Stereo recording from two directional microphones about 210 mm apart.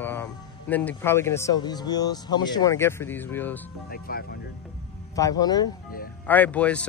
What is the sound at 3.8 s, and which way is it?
Speech, 45° left (ahead or behind).